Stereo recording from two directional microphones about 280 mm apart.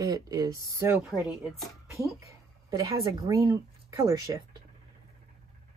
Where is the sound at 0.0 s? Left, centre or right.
Centre.